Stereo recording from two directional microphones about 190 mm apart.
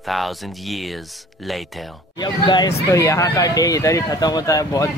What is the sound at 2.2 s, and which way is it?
Speech, 20° left (ahead or behind).